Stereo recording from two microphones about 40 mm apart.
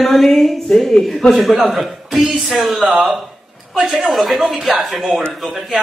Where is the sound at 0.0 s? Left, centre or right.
Centre.